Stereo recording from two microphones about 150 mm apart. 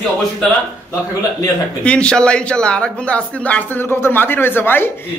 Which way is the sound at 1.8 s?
5° left (ahead or behind).